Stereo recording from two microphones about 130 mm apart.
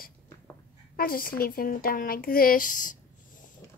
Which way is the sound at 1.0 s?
90° left.